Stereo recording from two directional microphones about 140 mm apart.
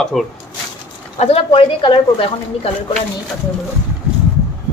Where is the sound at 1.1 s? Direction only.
45° left (ahead or behind).